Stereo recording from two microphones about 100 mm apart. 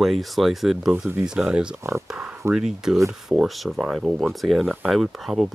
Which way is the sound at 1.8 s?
30° right (ahead or behind).